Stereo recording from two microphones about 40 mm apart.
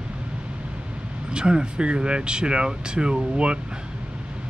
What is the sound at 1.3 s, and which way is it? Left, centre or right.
Speech, right.